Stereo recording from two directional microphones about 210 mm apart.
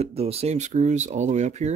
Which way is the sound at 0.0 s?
30° right (ahead or behind).